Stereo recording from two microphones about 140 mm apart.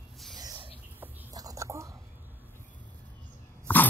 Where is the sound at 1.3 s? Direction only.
25° right (ahead or behind).